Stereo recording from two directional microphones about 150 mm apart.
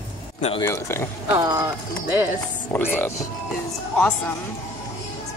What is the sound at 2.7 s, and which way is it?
Speech, 15° left (ahead or behind).